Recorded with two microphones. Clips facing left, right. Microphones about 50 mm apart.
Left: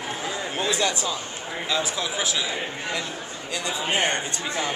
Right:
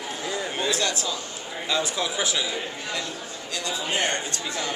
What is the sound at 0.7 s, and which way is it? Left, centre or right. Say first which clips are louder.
Speech: left 3 dB; centre.